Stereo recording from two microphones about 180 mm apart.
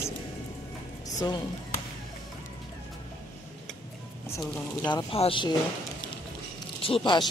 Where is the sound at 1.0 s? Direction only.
25° left (ahead or behind).